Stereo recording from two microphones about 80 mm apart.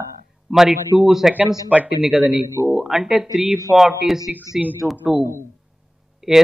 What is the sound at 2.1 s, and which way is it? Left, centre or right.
A man's voice, centre.